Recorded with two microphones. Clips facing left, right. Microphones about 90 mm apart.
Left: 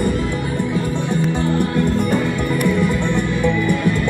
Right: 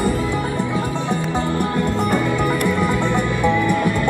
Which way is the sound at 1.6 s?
60° right (ahead or behind).